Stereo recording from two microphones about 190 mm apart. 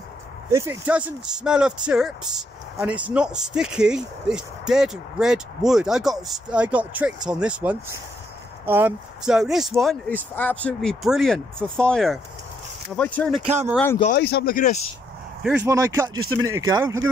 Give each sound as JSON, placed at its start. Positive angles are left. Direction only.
{"t": 0.5, "sound": "speech", "side_deg": -15}
{"t": 13.4, "sound": "speech", "side_deg": -35}
{"t": 14.1, "sound": "speech", "side_deg": 60}
{"t": 15.6, "sound": "speech", "side_deg": -15}